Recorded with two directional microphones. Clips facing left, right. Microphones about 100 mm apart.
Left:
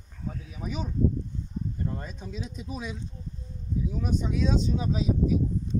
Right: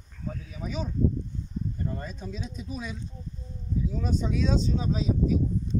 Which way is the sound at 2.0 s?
15° left (ahead or behind).